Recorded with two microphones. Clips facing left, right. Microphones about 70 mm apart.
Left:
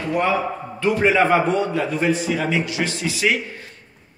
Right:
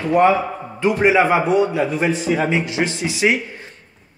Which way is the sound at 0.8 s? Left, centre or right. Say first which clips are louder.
Right 2 dB; centre.